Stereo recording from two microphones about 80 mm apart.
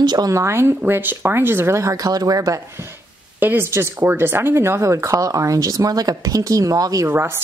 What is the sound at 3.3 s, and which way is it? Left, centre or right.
Speech, right.